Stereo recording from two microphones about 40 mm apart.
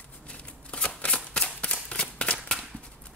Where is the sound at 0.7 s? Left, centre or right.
Left.